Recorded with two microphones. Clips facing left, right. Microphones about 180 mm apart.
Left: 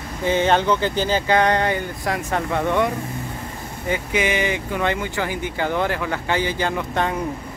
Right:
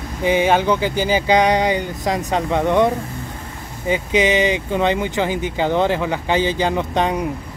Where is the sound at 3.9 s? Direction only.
20° right (ahead or behind).